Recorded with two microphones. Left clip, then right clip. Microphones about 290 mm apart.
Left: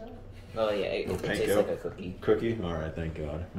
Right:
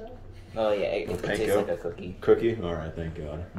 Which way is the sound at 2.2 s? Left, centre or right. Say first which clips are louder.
Right 5 dB; centre.